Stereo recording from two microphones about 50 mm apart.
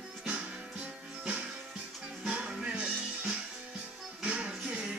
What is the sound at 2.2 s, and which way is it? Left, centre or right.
Music, centre.